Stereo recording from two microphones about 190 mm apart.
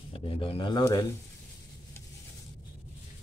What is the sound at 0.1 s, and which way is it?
Speech, 30° left (ahead or behind).